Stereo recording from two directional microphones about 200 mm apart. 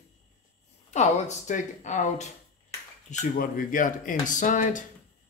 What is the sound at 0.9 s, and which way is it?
Speech, 35° left (ahead or behind).